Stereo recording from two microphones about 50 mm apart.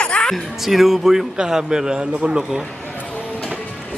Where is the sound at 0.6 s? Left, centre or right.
Centre.